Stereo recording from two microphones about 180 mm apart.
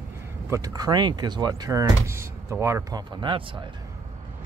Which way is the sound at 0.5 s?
20° right (ahead or behind).